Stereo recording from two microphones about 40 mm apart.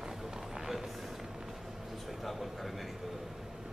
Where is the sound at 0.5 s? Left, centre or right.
Centre.